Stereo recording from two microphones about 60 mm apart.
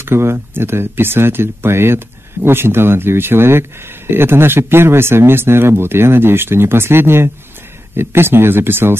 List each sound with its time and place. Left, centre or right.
0.0 s speech: right